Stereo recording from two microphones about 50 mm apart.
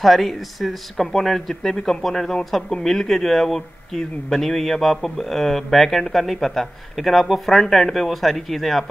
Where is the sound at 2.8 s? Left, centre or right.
Centre.